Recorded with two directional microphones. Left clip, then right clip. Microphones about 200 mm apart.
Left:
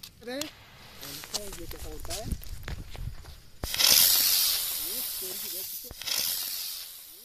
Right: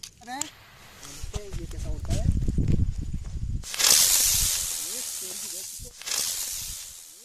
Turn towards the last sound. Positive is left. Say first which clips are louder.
# right 1 dB
turn(degrees=0)  # may be behind; listen again after turning